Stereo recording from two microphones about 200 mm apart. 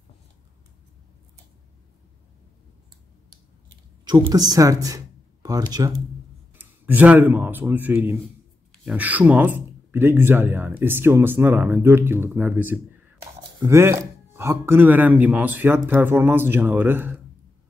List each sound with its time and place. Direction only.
4.0 s speech: 20° right (ahead or behind)
6.5 s speech: 10° right (ahead or behind)